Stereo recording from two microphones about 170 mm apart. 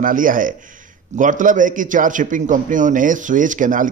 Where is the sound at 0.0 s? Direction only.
50° right (ahead or behind).